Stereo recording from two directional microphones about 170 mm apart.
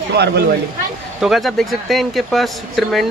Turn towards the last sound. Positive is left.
turn(degrees=0)  # may be behind; listen again after turning